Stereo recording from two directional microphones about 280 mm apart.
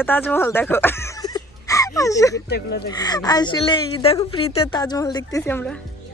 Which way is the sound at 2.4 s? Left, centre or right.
Left.